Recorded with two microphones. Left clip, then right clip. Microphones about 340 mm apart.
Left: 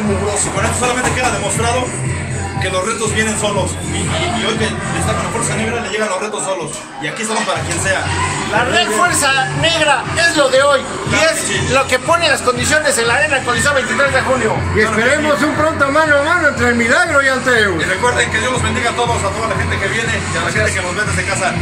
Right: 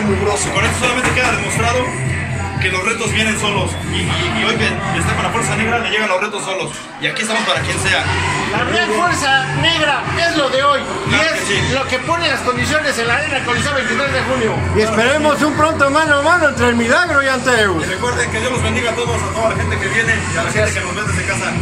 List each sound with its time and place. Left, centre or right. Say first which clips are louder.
8.7 s a man's voice: even; left
14.8 s speech: even; centre